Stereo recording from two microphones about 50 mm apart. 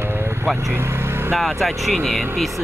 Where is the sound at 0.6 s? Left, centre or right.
Right.